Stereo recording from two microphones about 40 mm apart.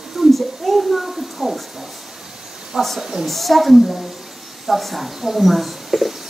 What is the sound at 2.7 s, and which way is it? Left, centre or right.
Speech, centre.